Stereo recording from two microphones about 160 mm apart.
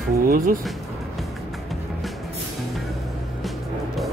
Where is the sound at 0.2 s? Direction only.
65° right (ahead or behind).